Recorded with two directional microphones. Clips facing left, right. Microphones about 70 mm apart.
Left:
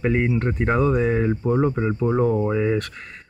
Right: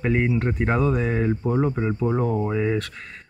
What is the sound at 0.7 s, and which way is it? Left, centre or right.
Speech, centre.